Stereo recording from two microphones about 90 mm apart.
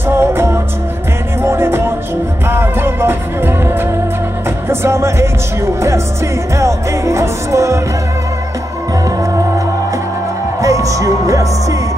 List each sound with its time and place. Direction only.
0.1 s music: 30° right (ahead or behind)
4.6 s music: 30° right (ahead or behind)
6.6 s music: 35° right (ahead or behind)
10.6 s music: 35° right (ahead or behind)